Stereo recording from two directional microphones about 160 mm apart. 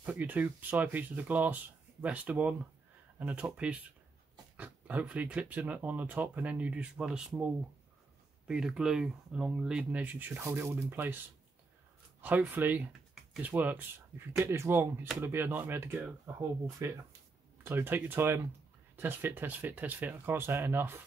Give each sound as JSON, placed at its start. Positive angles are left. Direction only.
{"t": 0.0, "sound": "speech", "side_deg": -10}
{"t": 8.5, "sound": "speech", "side_deg": -5}
{"t": 12.2, "sound": "speech", "side_deg": -10}